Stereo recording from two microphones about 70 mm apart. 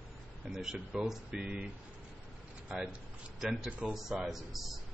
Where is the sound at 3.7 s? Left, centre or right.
Centre.